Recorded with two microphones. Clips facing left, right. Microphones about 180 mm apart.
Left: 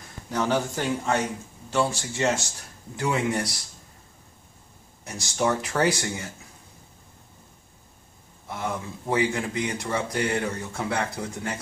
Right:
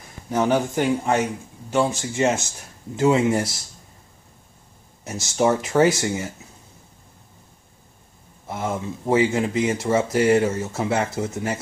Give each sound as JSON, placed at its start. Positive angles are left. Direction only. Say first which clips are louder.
{"t": 0.3, "sound": "a man's voice", "louder": "right 5 dB", "side_deg": -20}
{"t": 5.2, "sound": "speech", "louder": "right 5 dB", "side_deg": -20}
{"t": 8.5, "sound": "speech", "louder": "right 4 dB", "side_deg": -20}